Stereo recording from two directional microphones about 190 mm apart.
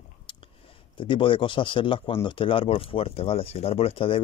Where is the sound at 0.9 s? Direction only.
25° left (ahead or behind).